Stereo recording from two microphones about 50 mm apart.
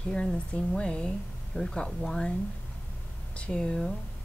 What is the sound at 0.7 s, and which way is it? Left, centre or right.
Speech, centre.